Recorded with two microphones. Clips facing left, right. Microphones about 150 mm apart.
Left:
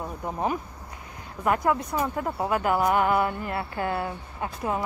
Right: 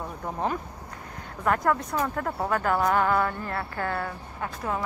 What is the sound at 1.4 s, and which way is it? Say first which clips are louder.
A woman's voice: left 1 dB; 10° left (ahead or behind).